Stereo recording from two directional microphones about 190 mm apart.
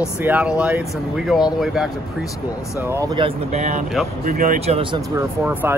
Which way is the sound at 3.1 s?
35° right (ahead or behind).